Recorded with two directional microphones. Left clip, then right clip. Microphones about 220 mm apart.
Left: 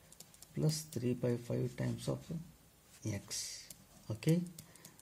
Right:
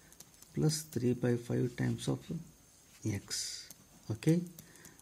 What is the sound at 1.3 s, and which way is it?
Speech, 30° right (ahead or behind).